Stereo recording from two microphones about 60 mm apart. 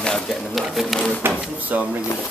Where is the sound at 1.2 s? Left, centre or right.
Right.